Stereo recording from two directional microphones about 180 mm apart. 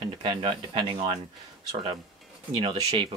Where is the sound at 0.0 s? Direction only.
25° right (ahead or behind).